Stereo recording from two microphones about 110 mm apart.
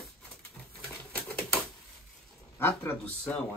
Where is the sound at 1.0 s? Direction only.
20° left (ahead or behind).